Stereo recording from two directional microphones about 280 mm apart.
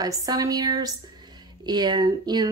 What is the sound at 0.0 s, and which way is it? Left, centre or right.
A woman's voice, centre.